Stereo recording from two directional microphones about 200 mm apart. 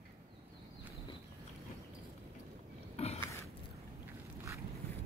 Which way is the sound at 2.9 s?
30° left (ahead or behind).